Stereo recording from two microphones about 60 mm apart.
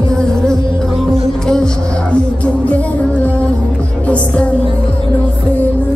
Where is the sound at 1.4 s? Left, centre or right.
Centre.